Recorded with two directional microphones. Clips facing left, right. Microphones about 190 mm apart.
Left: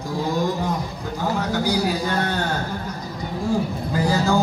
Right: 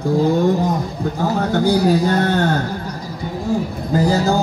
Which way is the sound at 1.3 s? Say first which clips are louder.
Right 6 dB; 50° right (ahead or behind).